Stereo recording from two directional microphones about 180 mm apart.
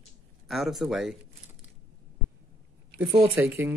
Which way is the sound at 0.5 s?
Centre (ahead or behind).